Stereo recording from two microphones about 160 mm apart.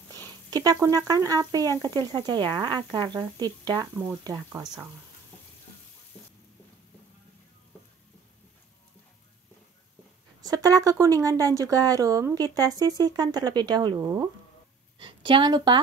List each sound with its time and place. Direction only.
0.3 s a sound: 25° right (ahead or behind)
0.8 s speech: 20° right (ahead or behind)
10.4 s a woman's voice: 20° right (ahead or behind)